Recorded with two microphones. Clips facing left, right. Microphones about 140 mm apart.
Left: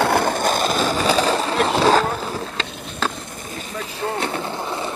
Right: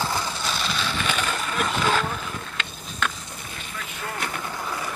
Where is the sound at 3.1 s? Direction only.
45° left (ahead or behind); by 4.9 s 25° left (ahead or behind).